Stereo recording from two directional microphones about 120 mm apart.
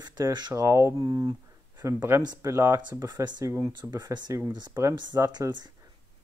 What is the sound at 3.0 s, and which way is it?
Speech, 35° right (ahead or behind).